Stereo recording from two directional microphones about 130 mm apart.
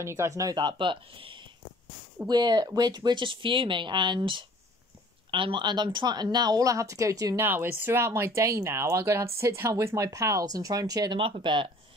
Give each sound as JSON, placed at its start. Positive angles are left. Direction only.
{"t": 0.0, "sound": "speech", "side_deg": -20}